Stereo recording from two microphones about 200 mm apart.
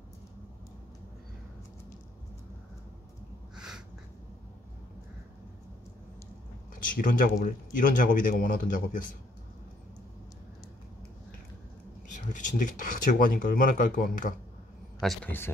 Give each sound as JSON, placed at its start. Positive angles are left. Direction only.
{"t": 3.5, "sound": "a sound", "side_deg": -5}
{"t": 6.7, "sound": "speech", "side_deg": 45}
{"t": 12.1, "sound": "speech", "side_deg": 40}
{"t": 15.0, "sound": "a man's voice", "side_deg": 5}